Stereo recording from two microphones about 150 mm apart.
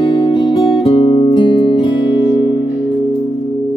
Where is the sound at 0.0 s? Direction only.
35° left (ahead or behind).